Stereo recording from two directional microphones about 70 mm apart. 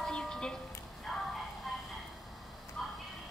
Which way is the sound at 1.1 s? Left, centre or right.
Centre.